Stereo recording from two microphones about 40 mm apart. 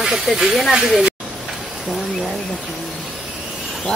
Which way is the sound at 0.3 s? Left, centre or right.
Centre.